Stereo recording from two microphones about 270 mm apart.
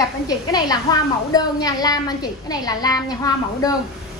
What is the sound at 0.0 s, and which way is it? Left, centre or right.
A woman's voice, centre.